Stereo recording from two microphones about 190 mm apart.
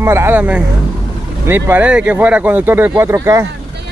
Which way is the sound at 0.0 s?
15° right (ahead or behind).